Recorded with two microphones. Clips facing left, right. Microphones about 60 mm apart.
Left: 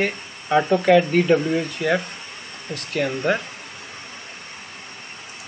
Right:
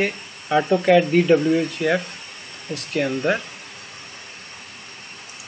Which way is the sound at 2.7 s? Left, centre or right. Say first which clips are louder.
Right 1 dB; centre.